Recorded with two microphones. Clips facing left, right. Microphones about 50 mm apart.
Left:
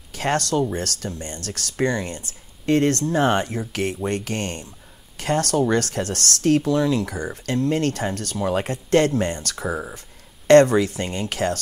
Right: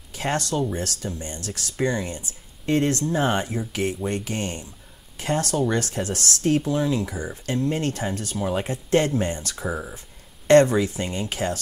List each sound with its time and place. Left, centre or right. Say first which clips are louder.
0.1 s speech: left 3 dB; left
9.7 s speech: left 2 dB; centre
9.9 s speech: left 2 dB; left